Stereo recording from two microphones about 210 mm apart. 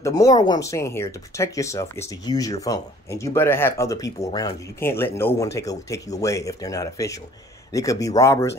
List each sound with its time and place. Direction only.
0.0 s speech: 15° left (ahead or behind)